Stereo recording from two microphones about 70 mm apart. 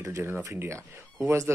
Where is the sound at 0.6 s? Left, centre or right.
Right.